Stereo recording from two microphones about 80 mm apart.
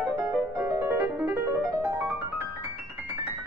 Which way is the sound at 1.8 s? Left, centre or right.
Right.